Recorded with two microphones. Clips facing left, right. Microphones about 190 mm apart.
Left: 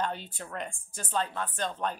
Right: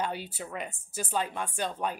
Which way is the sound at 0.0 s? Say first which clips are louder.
Even; 10° right (ahead or behind).